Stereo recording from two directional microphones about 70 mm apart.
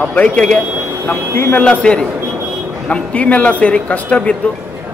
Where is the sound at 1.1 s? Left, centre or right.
Left.